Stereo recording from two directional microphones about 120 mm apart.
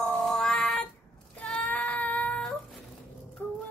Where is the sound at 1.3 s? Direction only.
10° left (ahead or behind).